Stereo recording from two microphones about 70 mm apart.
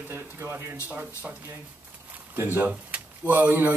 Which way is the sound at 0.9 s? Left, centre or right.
Centre.